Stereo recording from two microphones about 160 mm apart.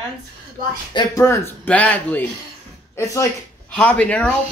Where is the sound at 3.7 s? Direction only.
10° left (ahead or behind).